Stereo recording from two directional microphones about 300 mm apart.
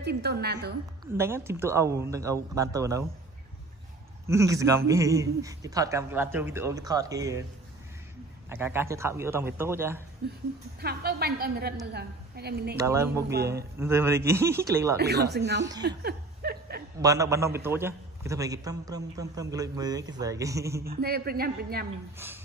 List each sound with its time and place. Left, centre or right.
0.0 s a man's voice: right
1.1 s a man's voice: centre
4.3 s a man's voice: centre
8.5 s a man's voice: centre
10.8 s a man's voice: right
12.7 s a man's voice: centre
15.0 s a man's voice: right
16.0 s a sound: right
17.0 s a man's voice: centre
20.8 s a man's voice: right